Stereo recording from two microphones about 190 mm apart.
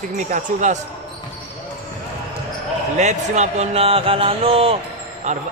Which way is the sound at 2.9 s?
40° right (ahead or behind).